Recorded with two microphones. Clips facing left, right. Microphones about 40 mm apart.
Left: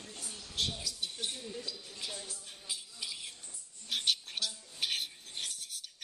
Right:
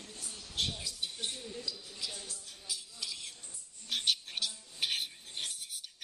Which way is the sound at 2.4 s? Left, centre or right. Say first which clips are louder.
Even; left.